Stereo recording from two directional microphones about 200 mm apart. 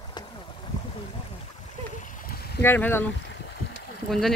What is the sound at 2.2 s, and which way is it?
Boat, 50° left (ahead or behind).